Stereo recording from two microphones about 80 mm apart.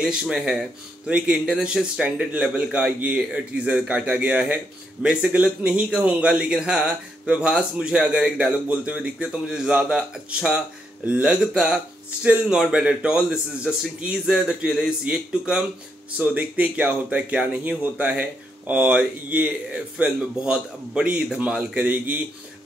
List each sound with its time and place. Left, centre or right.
0.0 s a man's voice: centre